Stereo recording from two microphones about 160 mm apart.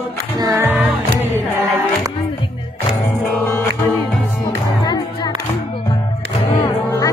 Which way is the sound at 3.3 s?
15° left (ahead or behind).